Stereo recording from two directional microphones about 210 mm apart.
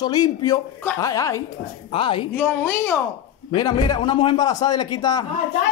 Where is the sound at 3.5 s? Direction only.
20° left (ahead or behind).